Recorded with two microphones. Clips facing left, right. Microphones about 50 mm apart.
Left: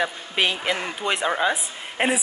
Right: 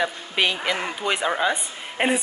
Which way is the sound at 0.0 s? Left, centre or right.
Centre.